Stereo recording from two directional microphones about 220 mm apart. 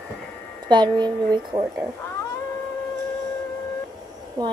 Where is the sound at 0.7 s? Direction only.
20° right (ahead or behind).